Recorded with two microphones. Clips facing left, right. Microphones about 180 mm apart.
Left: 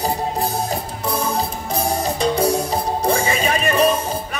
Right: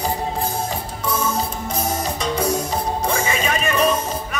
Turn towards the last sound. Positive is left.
turn(degrees=35)  # may be behind; listen again after turning